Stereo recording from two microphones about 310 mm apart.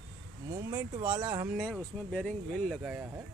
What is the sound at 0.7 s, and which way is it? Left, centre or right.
Speech, centre.